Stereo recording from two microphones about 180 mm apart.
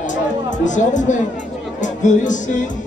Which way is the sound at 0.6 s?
45° left (ahead or behind).